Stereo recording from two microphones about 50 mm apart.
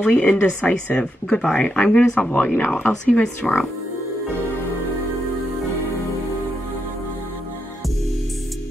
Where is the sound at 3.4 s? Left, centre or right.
Centre.